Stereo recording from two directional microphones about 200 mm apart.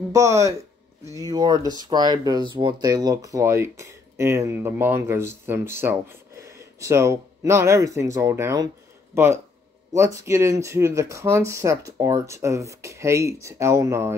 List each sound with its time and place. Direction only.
0.1 s speech: 15° right (ahead or behind)